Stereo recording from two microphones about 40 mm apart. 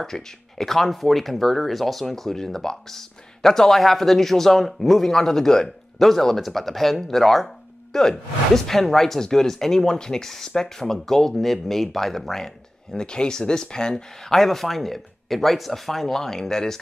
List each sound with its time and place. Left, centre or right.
0.0 s speech: centre
14.4 s speech: centre